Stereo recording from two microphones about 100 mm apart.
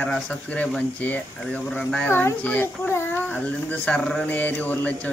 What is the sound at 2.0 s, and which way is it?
A child's voice, 20° left (ahead or behind).